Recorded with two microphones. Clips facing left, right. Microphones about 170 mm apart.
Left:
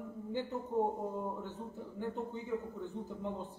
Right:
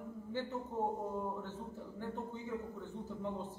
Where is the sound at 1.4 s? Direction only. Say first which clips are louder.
Left 1 dB; 15° left (ahead or behind).